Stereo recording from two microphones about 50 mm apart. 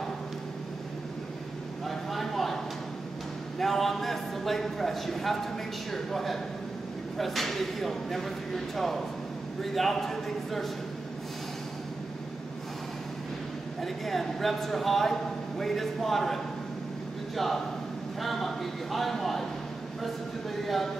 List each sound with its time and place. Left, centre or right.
1.9 s vehicle: centre
3.5 s a man's voice: centre
13.7 s speech: centre
17.4 s speech: centre
20.6 s speech: centre